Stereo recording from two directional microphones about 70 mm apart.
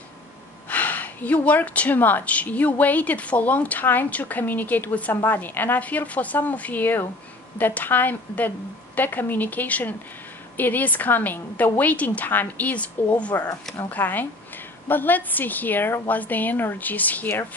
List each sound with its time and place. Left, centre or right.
0.7 s speech: left